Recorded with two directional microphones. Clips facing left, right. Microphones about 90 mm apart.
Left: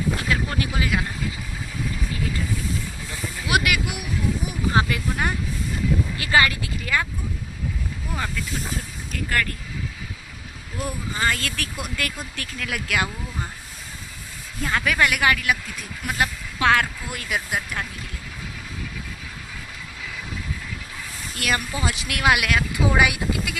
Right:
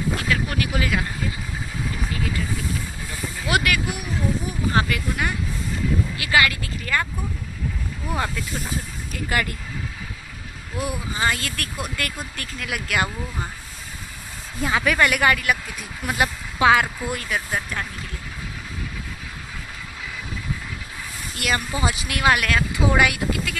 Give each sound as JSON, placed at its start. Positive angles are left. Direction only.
{"t": 0.2, "sound": "boat", "side_deg": 25}
{"t": 3.3, "sound": "speech", "side_deg": 15}
{"t": 6.1, "sound": "speech", "side_deg": 35}
{"t": 6.9, "sound": "speech", "side_deg": 5}
{"t": 9.1, "sound": "speech", "side_deg": -10}
{"t": 10.8, "sound": "speech", "side_deg": -10}
{"t": 14.6, "sound": "speech", "side_deg": -5}
{"t": 21.4, "sound": "speech", "side_deg": 0}